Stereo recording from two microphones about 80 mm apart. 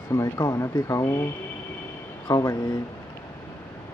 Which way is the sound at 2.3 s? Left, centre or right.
Left.